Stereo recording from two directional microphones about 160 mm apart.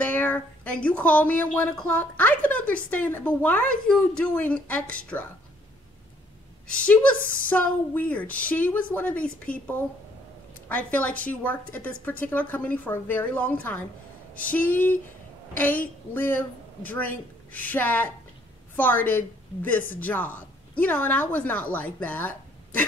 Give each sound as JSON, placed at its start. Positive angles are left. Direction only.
{"t": 0.0, "sound": "speech", "side_deg": 10}
{"t": 6.7, "sound": "speech", "side_deg": 10}
{"t": 7.2, "sound": "a woman's voice", "side_deg": 60}
{"t": 7.4, "sound": "a woman's voice", "side_deg": 10}